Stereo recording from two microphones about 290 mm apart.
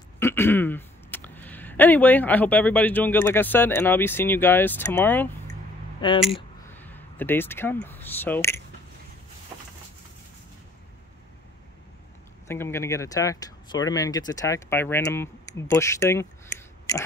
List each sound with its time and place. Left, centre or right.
0.2 s speech: centre
12.4 s speech: centre